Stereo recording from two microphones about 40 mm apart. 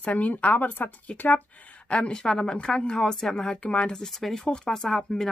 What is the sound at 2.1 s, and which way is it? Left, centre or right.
Speech, centre.